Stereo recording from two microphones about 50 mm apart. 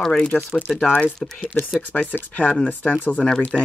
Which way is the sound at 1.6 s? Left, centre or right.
Left.